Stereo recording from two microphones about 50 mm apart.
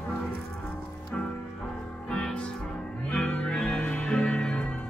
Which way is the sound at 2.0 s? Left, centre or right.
Centre.